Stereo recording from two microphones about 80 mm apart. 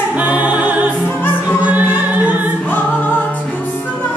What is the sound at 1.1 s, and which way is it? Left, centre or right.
Music, left.